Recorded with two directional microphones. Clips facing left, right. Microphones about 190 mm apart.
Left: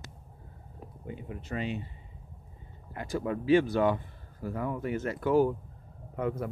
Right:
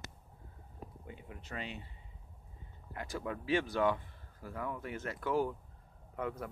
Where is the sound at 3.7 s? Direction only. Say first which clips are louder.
Left 5 dB; 35° left (ahead or behind).